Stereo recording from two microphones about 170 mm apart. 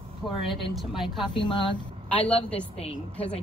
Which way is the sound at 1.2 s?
30° left (ahead or behind).